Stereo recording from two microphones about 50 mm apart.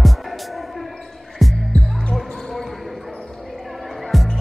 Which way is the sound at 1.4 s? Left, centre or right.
Centre.